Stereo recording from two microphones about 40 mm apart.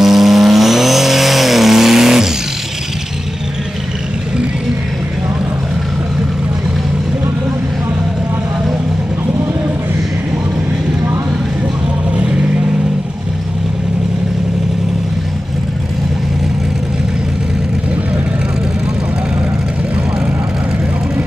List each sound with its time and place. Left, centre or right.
0.0 s vehicle: centre
12.1 s vehicle: right